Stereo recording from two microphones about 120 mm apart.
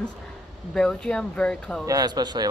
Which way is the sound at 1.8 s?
35° right (ahead or behind).